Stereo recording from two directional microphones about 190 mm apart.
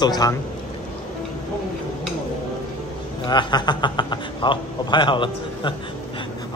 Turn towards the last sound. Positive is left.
turn(degrees=25)  # may be behind; listen again after turning